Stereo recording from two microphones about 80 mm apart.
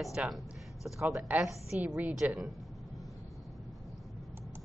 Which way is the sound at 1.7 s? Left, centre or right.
Centre.